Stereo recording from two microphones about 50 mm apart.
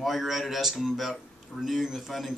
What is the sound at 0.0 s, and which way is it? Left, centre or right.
Speech, centre.